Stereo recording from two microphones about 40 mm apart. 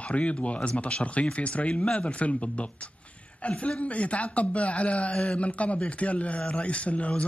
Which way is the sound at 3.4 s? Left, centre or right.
Left.